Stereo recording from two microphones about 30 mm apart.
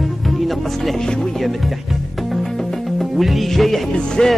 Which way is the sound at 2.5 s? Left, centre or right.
Centre.